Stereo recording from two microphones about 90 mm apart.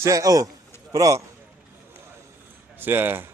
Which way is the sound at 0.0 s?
40° right (ahead or behind).